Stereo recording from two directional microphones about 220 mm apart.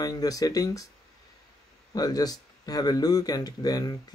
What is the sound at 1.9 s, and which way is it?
Speech, 15° left (ahead or behind).